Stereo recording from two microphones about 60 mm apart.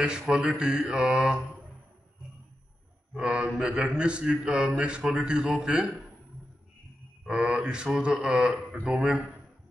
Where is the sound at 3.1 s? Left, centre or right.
Centre.